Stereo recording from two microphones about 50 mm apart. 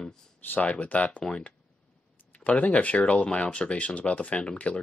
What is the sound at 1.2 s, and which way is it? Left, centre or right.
Speech, centre.